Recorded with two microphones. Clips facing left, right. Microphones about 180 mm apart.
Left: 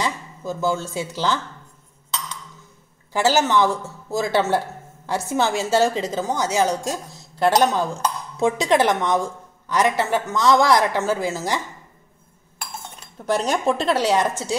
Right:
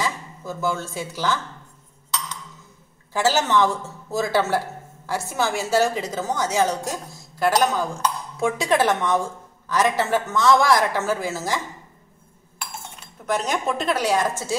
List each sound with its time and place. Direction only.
0.0 s speech: 20° left (ahead or behind)
3.1 s a woman's voice: 15° left (ahead or behind)
13.2 s a woman's voice: 30° left (ahead or behind)